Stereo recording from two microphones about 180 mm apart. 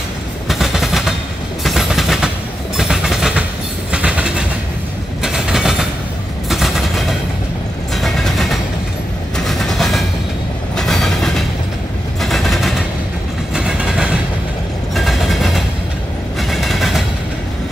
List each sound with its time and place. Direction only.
0.5 s a sound: centre (ahead or behind)
1.6 s train: centre (ahead or behind)
6.5 s vehicle: centre (ahead or behind)
9.4 s train: centre (ahead or behind)
12.2 s vehicle: centre (ahead or behind)
13.6 s train: 5° right (ahead or behind)
15.0 s vehicle: centre (ahead or behind)